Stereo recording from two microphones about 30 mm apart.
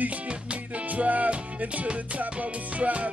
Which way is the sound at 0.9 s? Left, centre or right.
Right.